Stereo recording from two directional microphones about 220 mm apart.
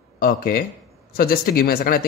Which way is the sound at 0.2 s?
40° left (ahead or behind).